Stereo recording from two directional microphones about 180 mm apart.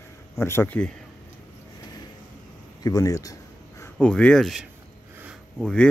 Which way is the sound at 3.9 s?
5° left (ahead or behind).